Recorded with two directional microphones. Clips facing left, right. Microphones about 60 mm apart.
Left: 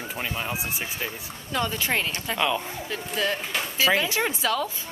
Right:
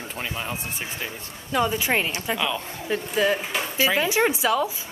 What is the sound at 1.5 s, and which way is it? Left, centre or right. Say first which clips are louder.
Speech: right 4 dB; centre.